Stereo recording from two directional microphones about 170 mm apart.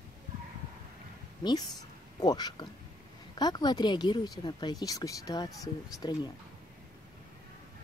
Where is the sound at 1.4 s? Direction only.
25° left (ahead or behind).